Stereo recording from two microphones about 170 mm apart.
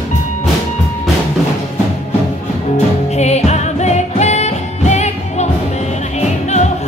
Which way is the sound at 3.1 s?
40° left (ahead or behind).